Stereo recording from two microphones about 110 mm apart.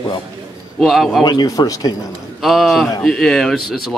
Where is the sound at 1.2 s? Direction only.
35° left (ahead or behind).